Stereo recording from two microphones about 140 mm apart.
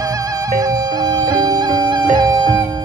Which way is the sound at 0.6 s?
25° right (ahead or behind).